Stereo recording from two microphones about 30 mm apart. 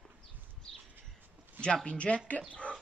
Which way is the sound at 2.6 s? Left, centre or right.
Left.